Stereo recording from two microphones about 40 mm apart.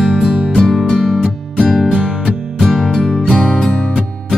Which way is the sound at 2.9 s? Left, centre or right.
Centre.